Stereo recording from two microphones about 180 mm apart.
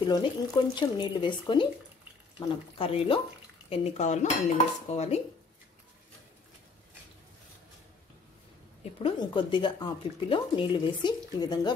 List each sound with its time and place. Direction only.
0.0 s speech: 25° left (ahead or behind)
9.0 s speech: 25° left (ahead or behind)